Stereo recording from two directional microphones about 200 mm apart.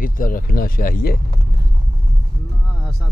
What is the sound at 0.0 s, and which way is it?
Speech, 45° left (ahead or behind).